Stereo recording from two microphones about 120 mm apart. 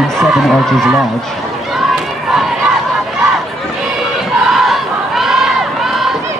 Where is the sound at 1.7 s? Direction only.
Centre (ahead or behind).